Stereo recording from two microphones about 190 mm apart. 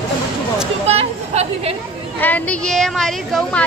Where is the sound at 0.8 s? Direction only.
35° right (ahead or behind).